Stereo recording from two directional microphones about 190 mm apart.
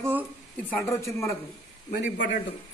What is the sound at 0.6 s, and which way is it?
Speech, 15° left (ahead or behind).